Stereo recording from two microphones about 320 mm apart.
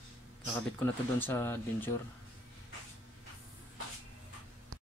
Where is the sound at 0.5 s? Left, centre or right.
Centre.